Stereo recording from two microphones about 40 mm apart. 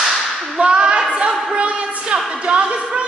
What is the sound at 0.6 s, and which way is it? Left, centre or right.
Clapping, right.